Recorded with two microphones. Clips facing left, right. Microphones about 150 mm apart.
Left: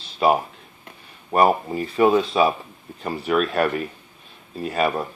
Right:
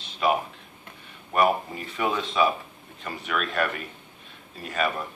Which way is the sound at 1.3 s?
35° left (ahead or behind).